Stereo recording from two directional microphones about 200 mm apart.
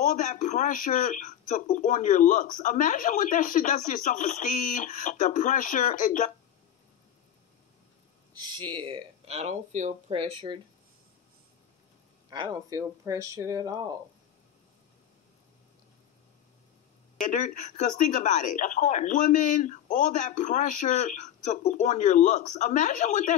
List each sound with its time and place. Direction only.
0.0 s speech: 40° left (ahead or behind)
8.4 s speech: 20° right (ahead or behind)
12.3 s speech: 20° right (ahead or behind)
17.3 s speech: 40° left (ahead or behind)